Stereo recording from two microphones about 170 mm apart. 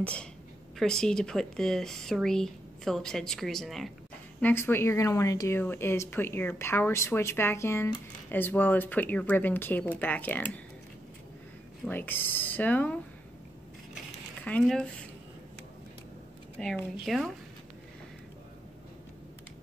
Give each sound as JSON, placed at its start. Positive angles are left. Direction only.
{"t": 0.0, "sound": "speech", "side_deg": 5}
{"t": 4.4, "sound": "speech", "side_deg": 10}
{"t": 11.8, "sound": "speech", "side_deg": 10}
{"t": 14.4, "sound": "speech", "side_deg": 5}
{"t": 16.5, "sound": "speech", "side_deg": 5}